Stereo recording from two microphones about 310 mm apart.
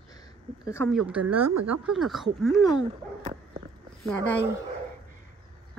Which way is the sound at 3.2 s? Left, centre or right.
Centre.